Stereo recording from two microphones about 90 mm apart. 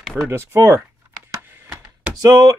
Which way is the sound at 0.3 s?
30° right (ahead or behind).